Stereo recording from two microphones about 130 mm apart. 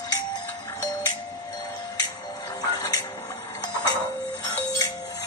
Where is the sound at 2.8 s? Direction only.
25° left (ahead or behind).